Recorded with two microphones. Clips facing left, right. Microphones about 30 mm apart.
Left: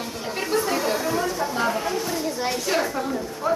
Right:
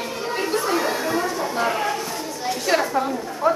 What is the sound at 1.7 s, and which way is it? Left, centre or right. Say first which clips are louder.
Speech: right 2 dB; right.